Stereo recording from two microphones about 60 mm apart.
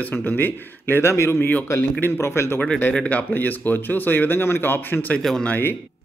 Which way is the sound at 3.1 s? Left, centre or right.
Left.